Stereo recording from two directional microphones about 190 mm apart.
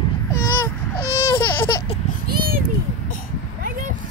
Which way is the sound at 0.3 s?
15° left (ahead or behind).